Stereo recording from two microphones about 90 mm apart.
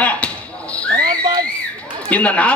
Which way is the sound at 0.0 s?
15° left (ahead or behind).